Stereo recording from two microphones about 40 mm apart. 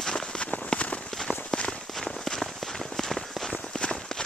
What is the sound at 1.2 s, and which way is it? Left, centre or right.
Walk, left.